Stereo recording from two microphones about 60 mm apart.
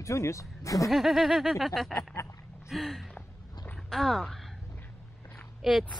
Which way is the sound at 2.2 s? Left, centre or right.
Left.